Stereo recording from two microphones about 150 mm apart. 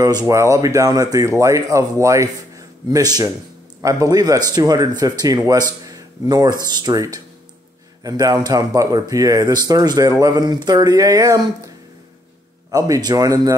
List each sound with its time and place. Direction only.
0.3 s speech: 20° right (ahead or behind)
12.7 s speech: 25° right (ahead or behind)